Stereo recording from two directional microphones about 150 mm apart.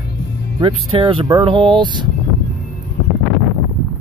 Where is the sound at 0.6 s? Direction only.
35° right (ahead or behind).